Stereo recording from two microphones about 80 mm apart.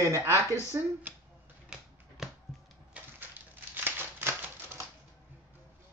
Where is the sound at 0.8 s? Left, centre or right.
Right.